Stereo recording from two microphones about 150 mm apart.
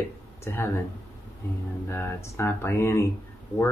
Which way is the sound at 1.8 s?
15° left (ahead or behind).